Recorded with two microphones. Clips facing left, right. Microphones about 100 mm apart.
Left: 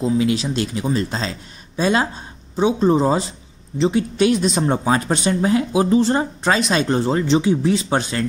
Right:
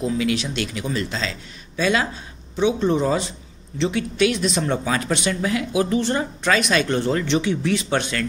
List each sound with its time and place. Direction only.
0.0 s speech: 30° left (ahead or behind)